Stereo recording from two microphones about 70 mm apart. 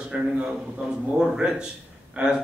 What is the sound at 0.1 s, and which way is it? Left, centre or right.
A man's voice, centre.